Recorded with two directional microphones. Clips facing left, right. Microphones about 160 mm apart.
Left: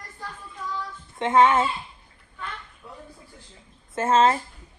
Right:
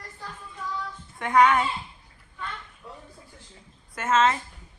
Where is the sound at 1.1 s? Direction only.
25° left (ahead or behind).